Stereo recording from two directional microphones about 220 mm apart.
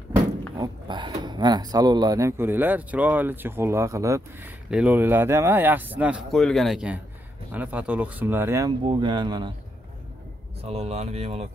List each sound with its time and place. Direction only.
0.6 s speech: 20° right (ahead or behind)
10.6 s speech: 30° right (ahead or behind)